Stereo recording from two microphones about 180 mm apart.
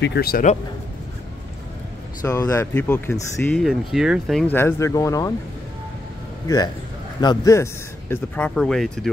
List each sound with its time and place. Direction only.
0.0 s a man's voice: 60° left (ahead or behind)
2.2 s speech: 20° left (ahead or behind); by 4.6 s centre (ahead or behind)
4.6 s speech: 15° left (ahead or behind)
6.4 s a man's voice: 20° left (ahead or behind); by 9.1 s 5° left (ahead or behind)